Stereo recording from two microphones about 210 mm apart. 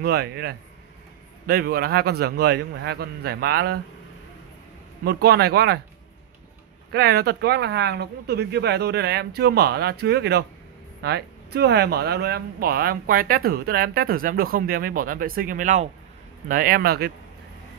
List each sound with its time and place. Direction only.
0.0 s speech: 50° right (ahead or behind)
5.0 s speech: 50° right (ahead or behind)
6.9 s speech: 50° right (ahead or behind)